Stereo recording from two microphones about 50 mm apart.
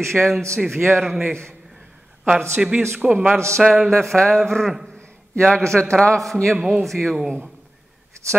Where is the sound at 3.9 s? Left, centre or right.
Centre.